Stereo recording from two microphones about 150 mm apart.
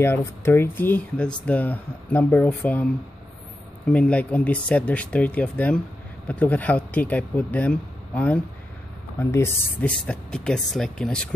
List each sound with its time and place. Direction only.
0.0 s a man's voice: 15° left (ahead or behind)
3.9 s a man's voice: 10° left (ahead or behind)